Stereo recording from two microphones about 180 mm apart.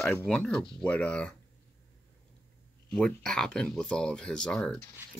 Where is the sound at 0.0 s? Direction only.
10° left (ahead or behind).